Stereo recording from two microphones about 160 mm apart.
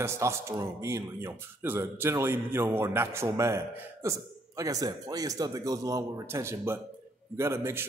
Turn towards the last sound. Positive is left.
turn(degrees=-15)  # may be behind; listen again after turning